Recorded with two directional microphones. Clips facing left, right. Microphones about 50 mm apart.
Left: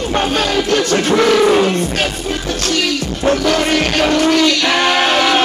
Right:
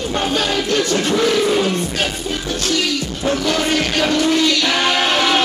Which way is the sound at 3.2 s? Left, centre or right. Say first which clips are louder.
Left 4 dB; left.